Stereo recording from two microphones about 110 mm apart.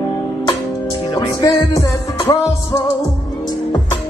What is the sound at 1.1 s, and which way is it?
Music, 30° left (ahead or behind).